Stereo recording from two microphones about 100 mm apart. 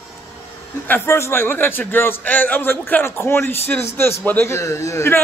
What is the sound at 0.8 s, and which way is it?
A man's voice, 25° left (ahead or behind).